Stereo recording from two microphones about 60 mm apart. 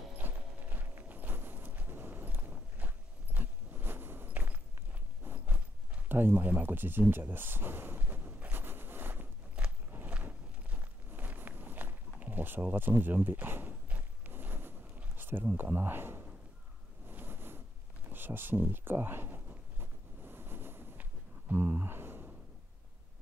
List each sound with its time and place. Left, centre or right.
0.2 s clip-clop: right
3.3 s a sound: right
6.0 s speech: right
8.3 s zipper: right
9.6 s biting: centre
10.0 s walk: right
14.3 s a sound: right
15.5 s speech: right
17.1 s a sound: right